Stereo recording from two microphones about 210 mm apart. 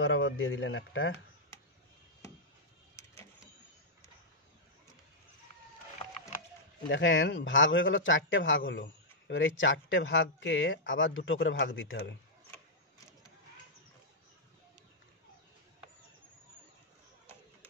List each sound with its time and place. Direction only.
0.0 s speech: 65° left (ahead or behind)
3.0 s vehicle: 10° left (ahead or behind)
6.9 s a man's voice: 60° left (ahead or behind)